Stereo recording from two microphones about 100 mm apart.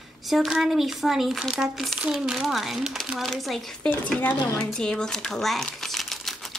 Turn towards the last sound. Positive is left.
turn(degrees=0)  # may be behind; listen again after turning